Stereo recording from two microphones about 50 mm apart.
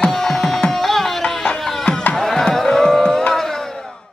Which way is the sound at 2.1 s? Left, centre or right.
Centre.